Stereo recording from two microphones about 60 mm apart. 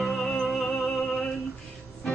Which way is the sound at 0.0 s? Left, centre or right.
Centre.